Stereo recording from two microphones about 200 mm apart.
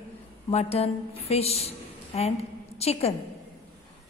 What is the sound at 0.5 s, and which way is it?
A woman's voice, 30° left (ahead or behind).